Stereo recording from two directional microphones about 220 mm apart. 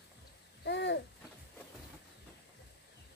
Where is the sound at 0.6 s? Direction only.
50° left (ahead or behind).